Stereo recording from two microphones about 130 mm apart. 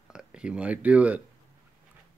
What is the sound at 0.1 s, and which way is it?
Speech, 5° right (ahead or behind).